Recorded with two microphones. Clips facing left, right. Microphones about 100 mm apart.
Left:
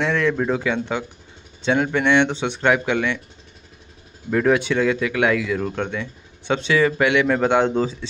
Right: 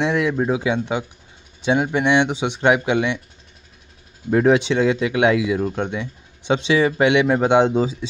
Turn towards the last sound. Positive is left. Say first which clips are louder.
# right 2 dB
turn(degrees=-15)  # may be behind; listen again after turning